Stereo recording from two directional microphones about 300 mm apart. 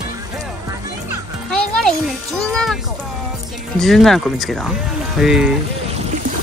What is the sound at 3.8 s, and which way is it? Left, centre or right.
Speech, centre.